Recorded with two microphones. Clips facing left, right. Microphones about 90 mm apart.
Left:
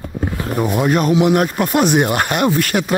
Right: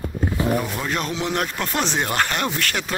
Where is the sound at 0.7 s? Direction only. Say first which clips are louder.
Left 11 dB; 15° left (ahead or behind).